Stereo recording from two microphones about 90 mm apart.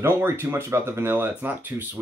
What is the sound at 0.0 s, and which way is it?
Speech, 25° right (ahead or behind).